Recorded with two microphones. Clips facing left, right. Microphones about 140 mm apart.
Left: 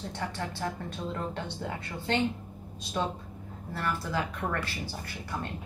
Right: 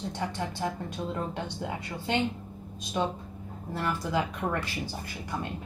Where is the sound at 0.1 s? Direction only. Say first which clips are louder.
Right 2 dB; 15° right (ahead or behind).